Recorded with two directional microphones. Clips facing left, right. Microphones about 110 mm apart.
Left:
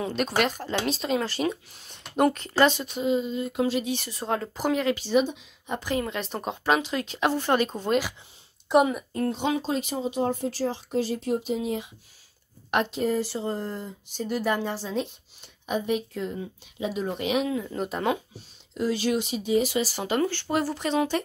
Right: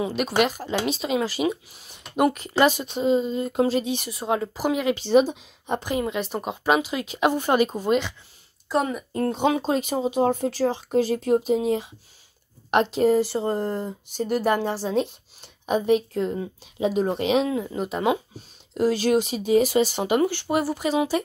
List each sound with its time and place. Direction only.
0.0 s speech: 5° right (ahead or behind)
3.0 s speech: 35° right (ahead or behind)
3.8 s speech: 15° right (ahead or behind)
4.9 s speech: 35° right (ahead or behind)
5.8 s speech: 15° right (ahead or behind)
6.0 s speech: 5° right (ahead or behind)
8.7 s speech: 20° left (ahead or behind)
9.3 s speech: 55° right (ahead or behind)
12.7 s a woman's voice: 25° right (ahead or behind)
13.1 s speech: 55° right (ahead or behind)
16.3 s speech: 40° right (ahead or behind)
17.7 s speech: centre (ahead or behind)
18.8 s speech: 50° right (ahead or behind)
19.8 s speech: 20° right (ahead or behind)